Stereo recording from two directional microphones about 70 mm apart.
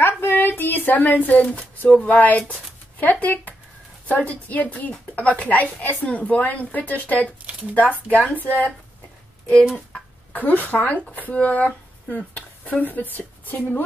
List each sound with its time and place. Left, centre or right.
0.0 s speech: left
1.4 s a woman's voice: centre
9.9 s a sound: left
11.1 s speech: left